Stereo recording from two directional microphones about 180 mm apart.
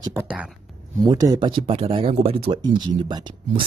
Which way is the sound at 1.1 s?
20° right (ahead or behind).